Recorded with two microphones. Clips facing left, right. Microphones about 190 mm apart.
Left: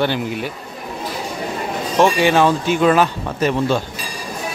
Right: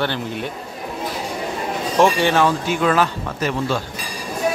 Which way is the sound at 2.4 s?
20° left (ahead or behind).